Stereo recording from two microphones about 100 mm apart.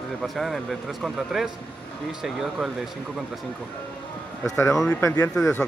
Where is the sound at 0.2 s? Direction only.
Centre (ahead or behind).